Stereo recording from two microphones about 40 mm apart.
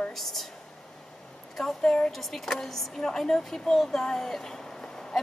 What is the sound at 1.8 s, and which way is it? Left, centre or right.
Speech, centre.